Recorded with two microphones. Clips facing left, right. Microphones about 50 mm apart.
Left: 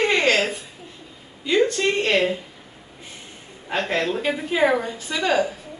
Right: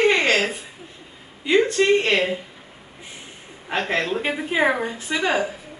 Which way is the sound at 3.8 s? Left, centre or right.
Right.